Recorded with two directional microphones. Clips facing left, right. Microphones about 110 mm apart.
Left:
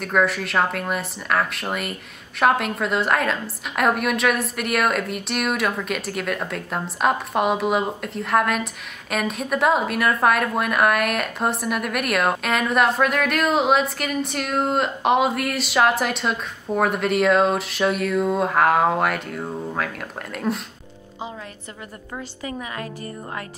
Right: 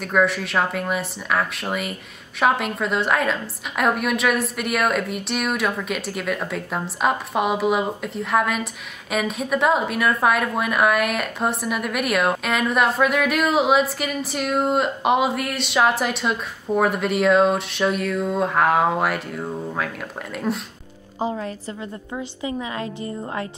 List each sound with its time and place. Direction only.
0.0 s a woman's voice: centre (ahead or behind)
22.4 s a woman's voice: 25° right (ahead or behind)